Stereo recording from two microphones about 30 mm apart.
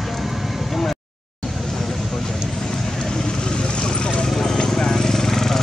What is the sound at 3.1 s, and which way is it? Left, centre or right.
Vehicle, left.